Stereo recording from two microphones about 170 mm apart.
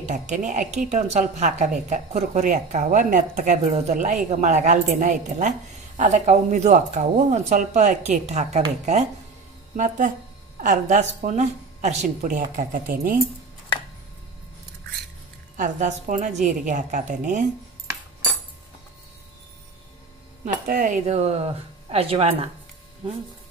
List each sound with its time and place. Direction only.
0.0 s a woman's voice: 45° right (ahead or behind)
9.8 s a woman's voice: 50° right (ahead or behind)
15.5 s a woman's voice: 50° right (ahead or behind)
20.6 s speech: 50° right (ahead or behind); by 22.5 s 35° right (ahead or behind)